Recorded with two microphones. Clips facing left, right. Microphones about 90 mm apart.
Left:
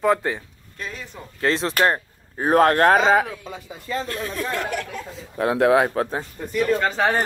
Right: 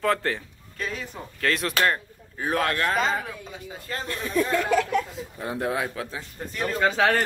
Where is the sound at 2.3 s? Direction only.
40° left (ahead or behind).